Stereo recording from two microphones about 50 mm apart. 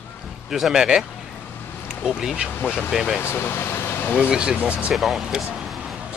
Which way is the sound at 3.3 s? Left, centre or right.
Left.